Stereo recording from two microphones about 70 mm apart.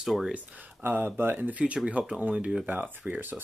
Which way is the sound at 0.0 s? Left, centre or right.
Centre.